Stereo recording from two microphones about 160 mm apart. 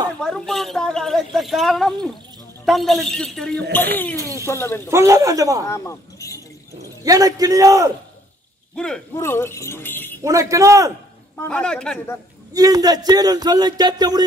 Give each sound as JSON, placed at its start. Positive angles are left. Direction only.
{"t": 0.2, "sound": "speech", "side_deg": 5}
{"t": 4.2, "sound": "speech", "side_deg": -20}
{"t": 4.5, "sound": "speech", "side_deg": 15}
{"t": 4.8, "sound": "speech", "side_deg": -20}
{"t": 5.7, "sound": "speech", "side_deg": 20}
{"t": 7.0, "sound": "speech", "side_deg": -20}
{"t": 8.7, "sound": "speech", "side_deg": 5}
{"t": 9.1, "sound": "speech", "side_deg": 15}
{"t": 10.2, "sound": "speech", "side_deg": -20}
{"t": 11.3, "sound": "speech", "side_deg": 10}
{"t": 12.5, "sound": "speech", "side_deg": -25}